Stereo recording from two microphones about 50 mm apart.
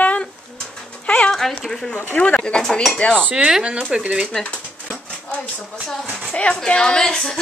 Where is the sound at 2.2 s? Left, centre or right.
Left.